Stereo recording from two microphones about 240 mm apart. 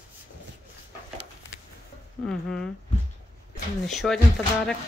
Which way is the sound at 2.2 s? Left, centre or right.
Centre.